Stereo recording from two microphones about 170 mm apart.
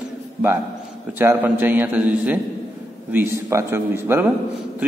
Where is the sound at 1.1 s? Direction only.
10° right (ahead or behind).